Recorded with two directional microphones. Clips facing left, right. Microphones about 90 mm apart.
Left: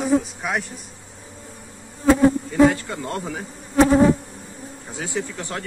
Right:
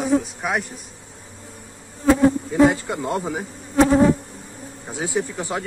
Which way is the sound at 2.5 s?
20° right (ahead or behind).